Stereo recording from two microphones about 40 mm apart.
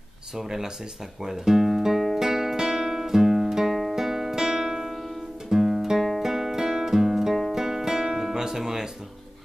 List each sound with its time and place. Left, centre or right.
0.4 s speech: centre
1.2 s music: centre